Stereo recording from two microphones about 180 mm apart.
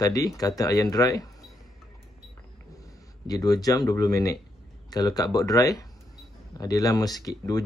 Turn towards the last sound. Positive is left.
turn(degrees=20)  # may be behind; listen again after turning